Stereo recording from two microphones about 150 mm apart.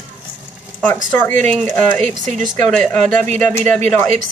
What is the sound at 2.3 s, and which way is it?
A woman's voice, 60° right (ahead or behind).